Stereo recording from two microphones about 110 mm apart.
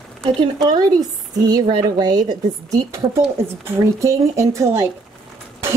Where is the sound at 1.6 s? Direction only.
40° right (ahead or behind).